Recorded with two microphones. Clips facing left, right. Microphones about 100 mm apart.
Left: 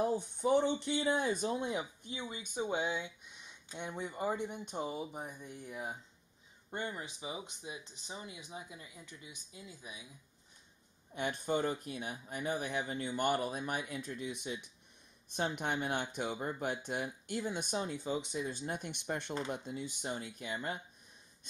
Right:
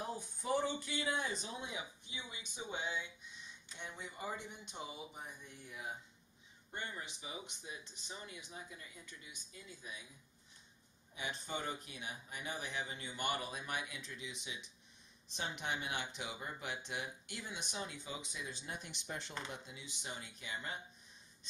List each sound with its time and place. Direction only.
0.4 s speech: 25° left (ahead or behind)
1.1 s speech: 50° left (ahead or behind)
6.7 s speech: 20° left (ahead or behind)
11.1 s speech: 50° left (ahead or behind)
18.5 s speech: 50° left (ahead or behind)